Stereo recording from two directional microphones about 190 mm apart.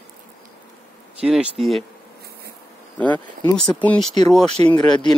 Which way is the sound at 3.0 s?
10° left (ahead or behind).